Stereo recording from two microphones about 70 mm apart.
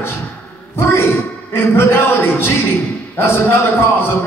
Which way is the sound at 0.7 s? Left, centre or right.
Left.